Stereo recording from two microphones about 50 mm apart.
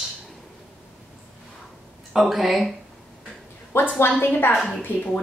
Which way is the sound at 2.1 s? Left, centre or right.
Centre.